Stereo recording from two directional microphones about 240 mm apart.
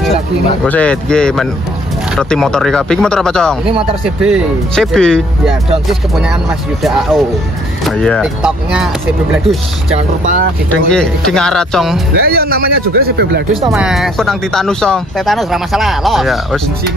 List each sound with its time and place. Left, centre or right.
0.7 s speech: centre
9.9 s a man's voice: right
10.9 s speech: centre
12.2 s a man's voice: right
13.7 s speech: centre